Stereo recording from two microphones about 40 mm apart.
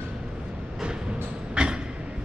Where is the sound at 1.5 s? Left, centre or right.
Right.